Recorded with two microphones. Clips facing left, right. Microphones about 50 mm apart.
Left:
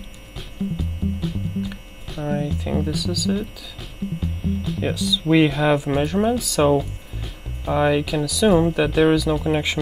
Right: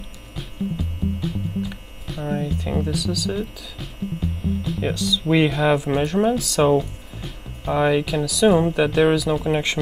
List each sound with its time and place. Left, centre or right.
0.4 s music: centre
5.3 s speech: centre